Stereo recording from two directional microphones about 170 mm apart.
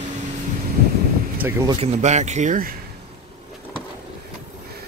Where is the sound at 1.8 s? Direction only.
40° right (ahead or behind).